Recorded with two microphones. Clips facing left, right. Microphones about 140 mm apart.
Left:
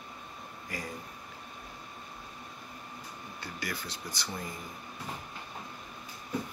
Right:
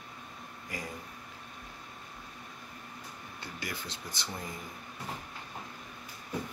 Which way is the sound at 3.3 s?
20° right (ahead or behind).